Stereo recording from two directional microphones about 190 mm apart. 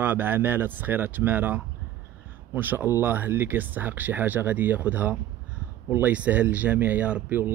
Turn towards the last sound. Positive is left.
turn(degrees=-10)  # may be behind; listen again after turning